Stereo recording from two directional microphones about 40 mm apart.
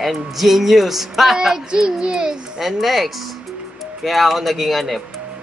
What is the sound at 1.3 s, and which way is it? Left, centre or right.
A child's voice, centre.